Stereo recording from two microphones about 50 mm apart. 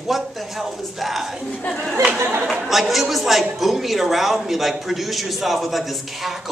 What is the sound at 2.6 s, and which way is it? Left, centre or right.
A man's voice, centre.